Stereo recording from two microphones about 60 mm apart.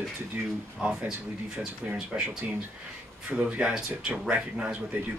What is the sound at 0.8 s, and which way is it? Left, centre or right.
Speech, centre.